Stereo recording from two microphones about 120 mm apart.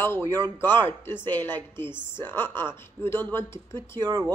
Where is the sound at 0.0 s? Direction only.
20° left (ahead or behind).